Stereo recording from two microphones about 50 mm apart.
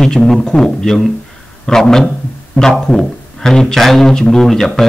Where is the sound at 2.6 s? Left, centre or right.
Left.